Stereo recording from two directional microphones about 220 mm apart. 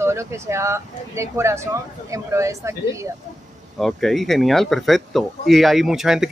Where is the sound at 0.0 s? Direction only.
10° right (ahead or behind).